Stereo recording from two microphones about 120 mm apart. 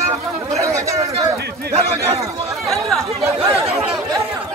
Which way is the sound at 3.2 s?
25° right (ahead or behind).